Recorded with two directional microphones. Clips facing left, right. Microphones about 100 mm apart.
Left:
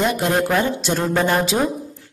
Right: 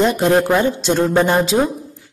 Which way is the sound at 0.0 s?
25° right (ahead or behind).